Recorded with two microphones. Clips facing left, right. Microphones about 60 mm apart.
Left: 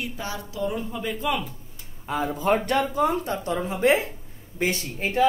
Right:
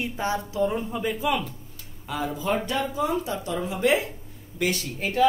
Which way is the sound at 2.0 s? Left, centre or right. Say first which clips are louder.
Left 3 dB; left.